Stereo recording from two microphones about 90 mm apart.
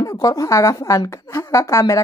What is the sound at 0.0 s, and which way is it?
Speech, 40° left (ahead or behind).